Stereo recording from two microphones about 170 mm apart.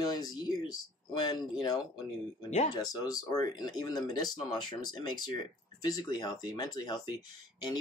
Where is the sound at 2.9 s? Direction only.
20° left (ahead or behind).